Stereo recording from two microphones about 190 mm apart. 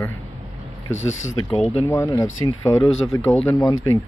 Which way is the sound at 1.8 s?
15° left (ahead or behind).